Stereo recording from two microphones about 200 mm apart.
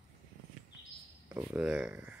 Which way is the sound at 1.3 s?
10° right (ahead or behind).